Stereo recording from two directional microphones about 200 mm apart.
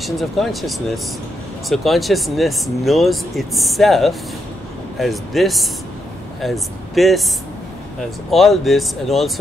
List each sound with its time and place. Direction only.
0.0 s speech: centre (ahead or behind)
8.3 s speech: centre (ahead or behind)